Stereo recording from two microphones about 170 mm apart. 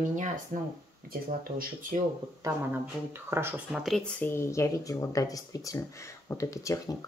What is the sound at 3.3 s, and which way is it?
Speech, 15° right (ahead or behind).